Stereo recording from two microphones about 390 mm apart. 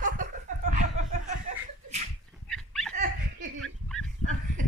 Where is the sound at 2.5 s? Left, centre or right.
Centre.